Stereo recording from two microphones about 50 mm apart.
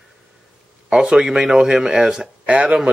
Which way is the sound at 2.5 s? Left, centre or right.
Right.